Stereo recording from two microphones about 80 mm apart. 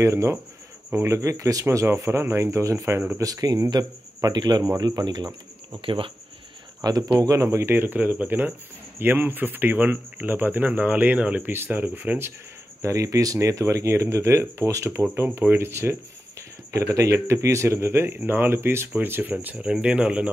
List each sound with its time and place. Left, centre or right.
0.0 s speech: right
3.2 s speech: right
3.7 s speech: right
4.6 s speech: right
6.8 s speech: right
7.4 s speech: right
12.8 s speech: right
15.2 s speech: right